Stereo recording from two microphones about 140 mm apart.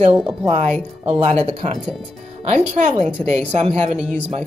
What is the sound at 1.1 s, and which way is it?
Speech, 50° right (ahead or behind).